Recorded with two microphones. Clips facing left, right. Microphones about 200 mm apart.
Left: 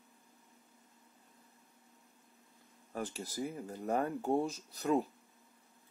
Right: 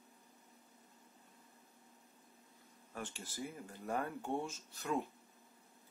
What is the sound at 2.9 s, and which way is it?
Speech, 40° left (ahead or behind).